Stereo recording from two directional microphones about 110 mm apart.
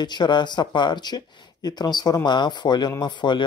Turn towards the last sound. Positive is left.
turn(degrees=45)  # may be behind; listen again after turning